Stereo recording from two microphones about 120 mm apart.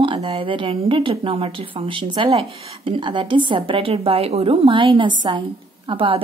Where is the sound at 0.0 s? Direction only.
50° right (ahead or behind).